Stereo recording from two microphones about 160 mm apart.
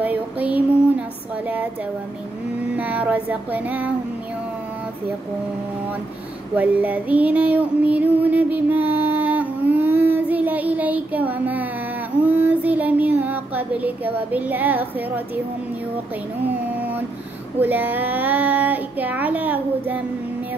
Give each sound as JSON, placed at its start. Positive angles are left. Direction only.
{"t": 0.0, "sound": "a sound", "side_deg": -10}
{"t": 2.7, "sound": "child singing", "side_deg": -10}
{"t": 6.5, "sound": "female singing", "side_deg": -10}
{"t": 12.2, "sound": "child singing", "side_deg": -10}
{"t": 17.6, "sound": "child singing", "side_deg": -10}